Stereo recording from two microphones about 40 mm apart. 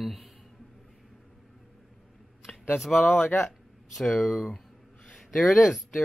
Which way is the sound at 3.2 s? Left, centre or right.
Left.